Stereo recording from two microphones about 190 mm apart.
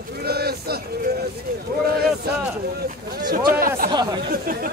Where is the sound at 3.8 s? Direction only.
25° right (ahead or behind).